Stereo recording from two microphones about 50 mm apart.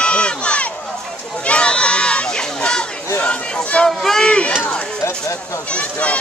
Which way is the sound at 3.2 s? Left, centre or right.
Left.